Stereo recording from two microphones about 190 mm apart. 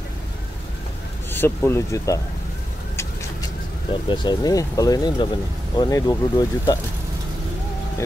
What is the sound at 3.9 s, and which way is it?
Speech, 25° left (ahead or behind).